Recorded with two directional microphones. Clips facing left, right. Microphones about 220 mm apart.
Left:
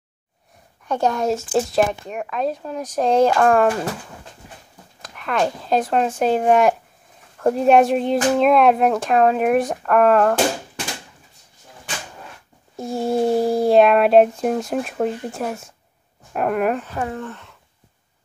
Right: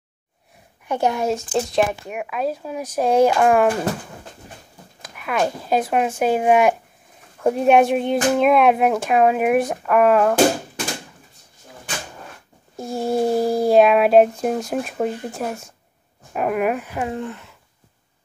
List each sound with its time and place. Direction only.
0.8 s speech: 10° right (ahead or behind)
1.3 s speech: centre (ahead or behind)
2.0 s speech: 10° right (ahead or behind)
5.0 s speech: 5° right (ahead or behind)
12.7 s speech: centre (ahead or behind); by 17.4 s 15° right (ahead or behind)